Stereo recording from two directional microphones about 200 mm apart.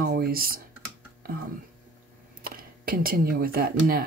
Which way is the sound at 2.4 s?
45° right (ahead or behind).